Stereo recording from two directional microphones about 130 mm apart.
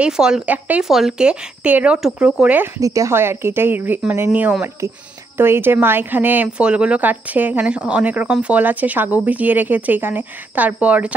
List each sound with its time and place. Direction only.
0.0 s speech: 5° right (ahead or behind)
2.8 s speech: 25° right (ahead or behind)
4.6 s speech: 25° right (ahead or behind)